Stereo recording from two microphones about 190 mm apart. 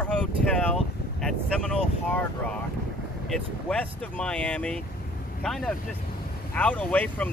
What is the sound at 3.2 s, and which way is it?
Speech, 5° left (ahead or behind).